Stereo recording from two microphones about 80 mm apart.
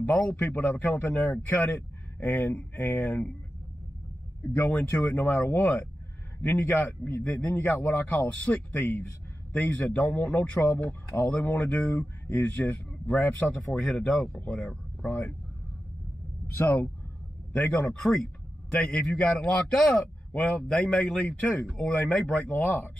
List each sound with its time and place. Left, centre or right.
0.0 s a man's voice: left
4.6 s a man's voice: left
15.0 s a man's voice: left
18.7 s a man's voice: centre